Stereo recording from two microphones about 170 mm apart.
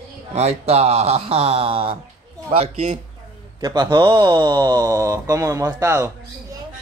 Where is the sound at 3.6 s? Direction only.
25° right (ahead or behind).